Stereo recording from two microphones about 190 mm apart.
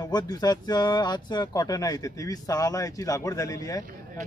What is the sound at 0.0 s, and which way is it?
A man's voice, 20° left (ahead or behind).